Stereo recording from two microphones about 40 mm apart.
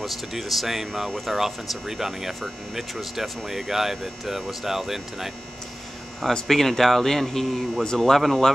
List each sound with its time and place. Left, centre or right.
0.0 s speech: centre
6.4 s speech: centre
7.8 s speech: centre